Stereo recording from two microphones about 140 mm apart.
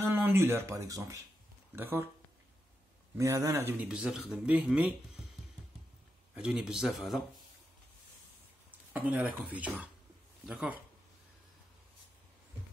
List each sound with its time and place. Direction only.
0.0 s speech: 15° right (ahead or behind)
3.2 s speech: 25° right (ahead or behind); by 4.9 s 5° right (ahead or behind)
6.3 s speech: 5° right (ahead or behind)
8.9 s speech: 10° right (ahead or behind)